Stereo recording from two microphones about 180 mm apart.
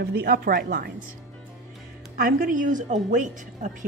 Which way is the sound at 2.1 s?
50° right (ahead or behind).